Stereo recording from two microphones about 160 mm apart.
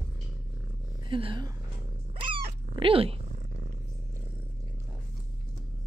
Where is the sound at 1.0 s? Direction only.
30° right (ahead or behind).